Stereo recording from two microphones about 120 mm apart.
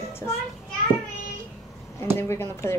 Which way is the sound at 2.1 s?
25° left (ahead or behind).